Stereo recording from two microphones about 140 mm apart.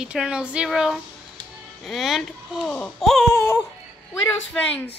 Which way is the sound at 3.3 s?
20° left (ahead or behind).